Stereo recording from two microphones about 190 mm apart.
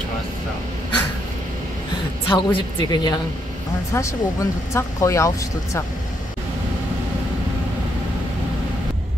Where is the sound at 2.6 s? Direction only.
25° left (ahead or behind).